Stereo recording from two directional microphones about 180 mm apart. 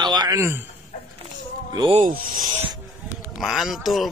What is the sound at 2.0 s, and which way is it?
Speech, 50° right (ahead or behind).